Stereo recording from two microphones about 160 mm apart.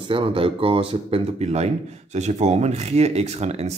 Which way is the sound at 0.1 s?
35° right (ahead or behind).